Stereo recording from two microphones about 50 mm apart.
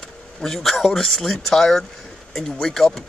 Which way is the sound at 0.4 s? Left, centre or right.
Centre.